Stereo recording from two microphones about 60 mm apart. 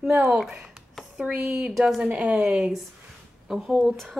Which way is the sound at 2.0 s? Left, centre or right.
Right.